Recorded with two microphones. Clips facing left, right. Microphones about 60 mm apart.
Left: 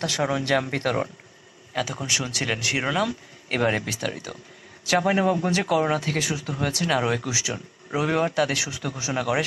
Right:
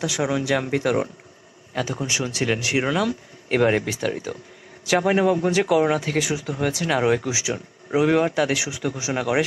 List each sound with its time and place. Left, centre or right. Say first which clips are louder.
0.0 s speech: right 2 dB; centre
2.0 s speech: right 3 dB; right